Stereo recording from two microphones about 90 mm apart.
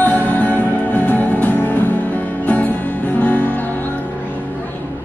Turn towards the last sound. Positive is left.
turn(degrees=20)  # may be behind; listen again after turning